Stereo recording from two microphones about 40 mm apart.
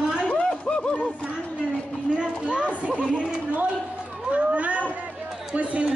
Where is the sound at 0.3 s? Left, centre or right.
Left.